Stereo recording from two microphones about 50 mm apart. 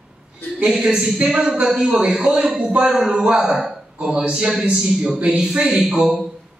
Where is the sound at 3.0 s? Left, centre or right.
Right.